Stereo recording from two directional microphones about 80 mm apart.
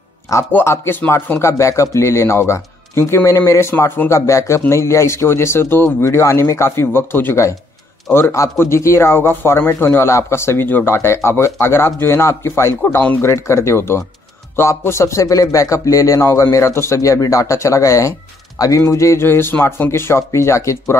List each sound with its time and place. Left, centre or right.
0.3 s speech: left
0.7 s speech: left
1.4 s speech: left
16.2 s speech: left